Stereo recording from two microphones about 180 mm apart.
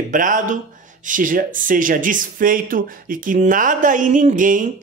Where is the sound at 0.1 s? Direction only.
45° right (ahead or behind).